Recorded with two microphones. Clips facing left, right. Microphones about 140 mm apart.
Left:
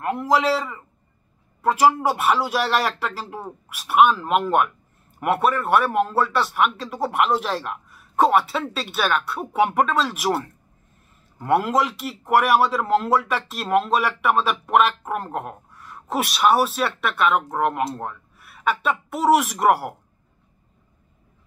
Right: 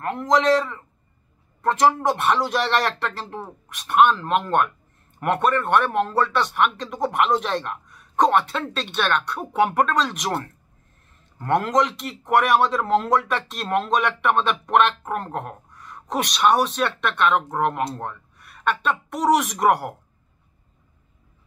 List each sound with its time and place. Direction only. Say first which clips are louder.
0.0 s speech: even; 5° left (ahead or behind)